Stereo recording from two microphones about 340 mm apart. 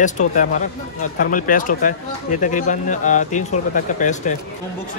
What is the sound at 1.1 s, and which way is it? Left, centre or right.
Speech, left.